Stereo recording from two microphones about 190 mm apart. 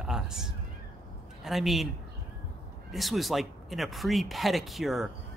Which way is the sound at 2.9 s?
Centre (ahead or behind).